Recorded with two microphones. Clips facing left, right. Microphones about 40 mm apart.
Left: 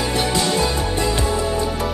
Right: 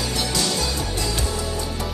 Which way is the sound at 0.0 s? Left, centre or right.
Left.